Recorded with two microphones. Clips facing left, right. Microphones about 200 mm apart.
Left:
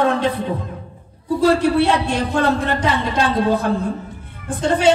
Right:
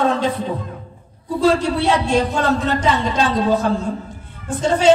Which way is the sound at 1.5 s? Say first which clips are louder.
Left 2 dB; 60° left (ahead or behind).